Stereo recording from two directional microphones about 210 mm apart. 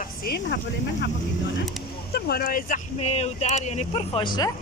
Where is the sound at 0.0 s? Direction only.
50° left (ahead or behind).